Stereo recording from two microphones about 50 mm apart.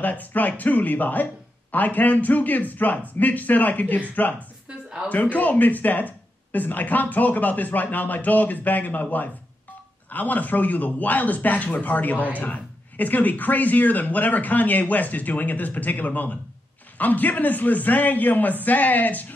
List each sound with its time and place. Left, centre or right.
0.0 s speech: left
4.6 s a sound: centre
5.1 s speech: left